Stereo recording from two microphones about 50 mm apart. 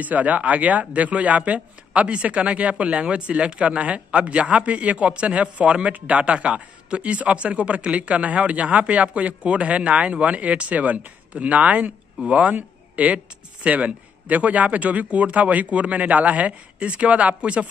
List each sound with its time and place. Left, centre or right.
0.0 s a man's voice: right